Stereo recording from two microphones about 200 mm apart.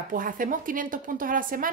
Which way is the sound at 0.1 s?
45° right (ahead or behind).